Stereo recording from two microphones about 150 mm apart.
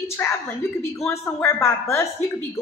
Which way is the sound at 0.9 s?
20° left (ahead or behind).